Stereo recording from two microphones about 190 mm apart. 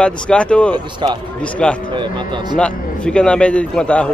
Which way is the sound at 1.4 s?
5° left (ahead or behind).